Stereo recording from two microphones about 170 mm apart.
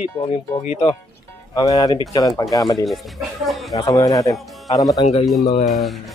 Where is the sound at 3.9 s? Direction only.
20° left (ahead or behind).